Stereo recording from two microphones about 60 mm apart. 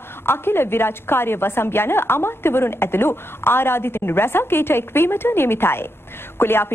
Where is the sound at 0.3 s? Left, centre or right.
Left.